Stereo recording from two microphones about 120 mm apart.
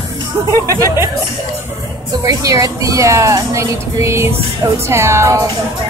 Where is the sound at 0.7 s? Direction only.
25° right (ahead or behind).